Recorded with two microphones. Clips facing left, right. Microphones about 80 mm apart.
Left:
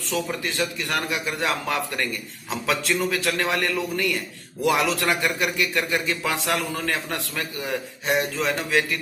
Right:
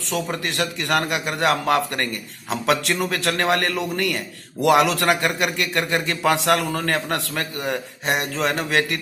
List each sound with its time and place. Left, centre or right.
0.1 s a man's voice: right